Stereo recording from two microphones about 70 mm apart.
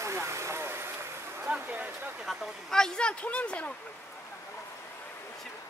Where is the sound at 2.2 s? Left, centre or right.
Centre.